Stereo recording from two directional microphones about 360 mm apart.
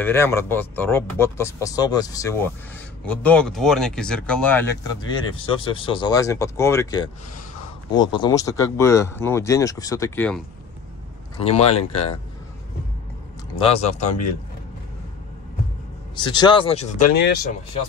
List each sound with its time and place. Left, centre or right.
0.0 s speech: centre
11.3 s speech: centre
13.6 s speech: centre
16.2 s speech: centre
17.2 s speech: left